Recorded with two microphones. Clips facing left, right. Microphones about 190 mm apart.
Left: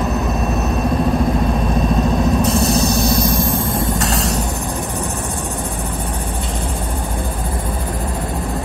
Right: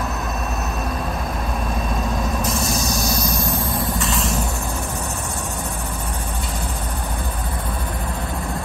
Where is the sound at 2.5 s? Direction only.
60° left (ahead or behind).